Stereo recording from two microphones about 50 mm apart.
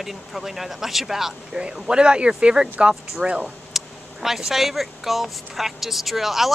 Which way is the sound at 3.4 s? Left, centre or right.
Centre.